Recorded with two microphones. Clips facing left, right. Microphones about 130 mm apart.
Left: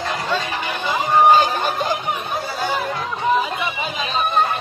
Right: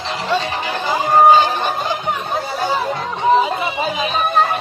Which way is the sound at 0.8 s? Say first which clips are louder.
Right 3 dB; 35° right (ahead or behind).